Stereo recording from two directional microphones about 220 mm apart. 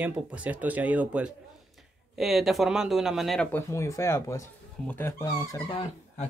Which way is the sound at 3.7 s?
15° left (ahead or behind).